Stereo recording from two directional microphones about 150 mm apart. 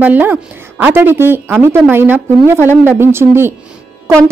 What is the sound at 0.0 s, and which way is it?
A woman's voice, 10° right (ahead or behind).